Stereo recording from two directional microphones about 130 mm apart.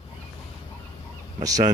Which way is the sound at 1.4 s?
25° right (ahead or behind).